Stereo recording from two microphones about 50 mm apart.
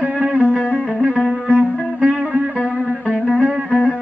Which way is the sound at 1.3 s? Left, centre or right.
Right.